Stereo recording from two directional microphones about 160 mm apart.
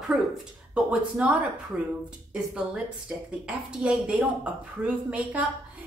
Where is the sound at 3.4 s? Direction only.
5° right (ahead or behind).